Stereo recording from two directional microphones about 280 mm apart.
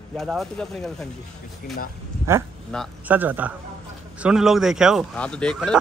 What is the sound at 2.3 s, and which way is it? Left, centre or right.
Speech, centre.